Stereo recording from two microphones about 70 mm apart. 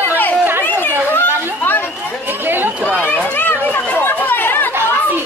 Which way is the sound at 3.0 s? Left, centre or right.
Left.